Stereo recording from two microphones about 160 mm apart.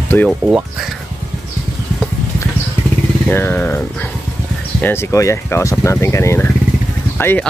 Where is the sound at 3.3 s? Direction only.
10° left (ahead or behind).